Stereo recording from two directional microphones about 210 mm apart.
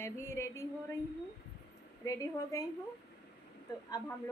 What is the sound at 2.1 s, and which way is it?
Speech, 15° left (ahead or behind).